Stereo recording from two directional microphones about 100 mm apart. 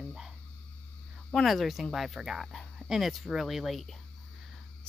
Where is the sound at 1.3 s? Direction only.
Centre (ahead or behind).